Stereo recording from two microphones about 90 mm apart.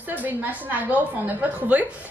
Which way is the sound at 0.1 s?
20° right (ahead or behind).